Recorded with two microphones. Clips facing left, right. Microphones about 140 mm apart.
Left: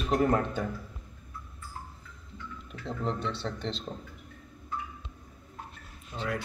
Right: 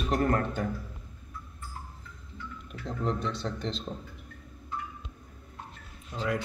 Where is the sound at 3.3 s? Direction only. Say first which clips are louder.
Right 1 dB; 40° right (ahead or behind).